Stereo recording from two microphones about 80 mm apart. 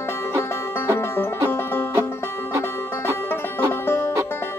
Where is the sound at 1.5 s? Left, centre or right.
Left.